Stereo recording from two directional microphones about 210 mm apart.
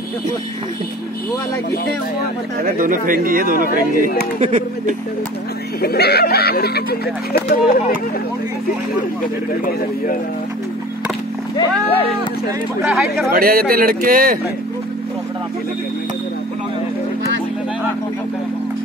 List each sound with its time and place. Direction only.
2.6 s speech: 40° right (ahead or behind)
5.8 s speech: 50° left (ahead or behind)
12.8 s speech: centre (ahead or behind)
13.3 s speech: 45° right (ahead or behind)